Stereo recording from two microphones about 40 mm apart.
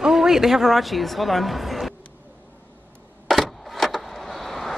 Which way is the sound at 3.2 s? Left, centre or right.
Centre.